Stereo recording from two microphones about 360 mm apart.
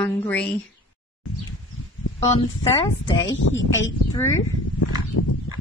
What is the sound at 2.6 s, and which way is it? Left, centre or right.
Speech, centre.